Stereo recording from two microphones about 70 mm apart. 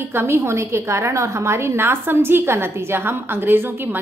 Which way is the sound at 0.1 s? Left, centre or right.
Right.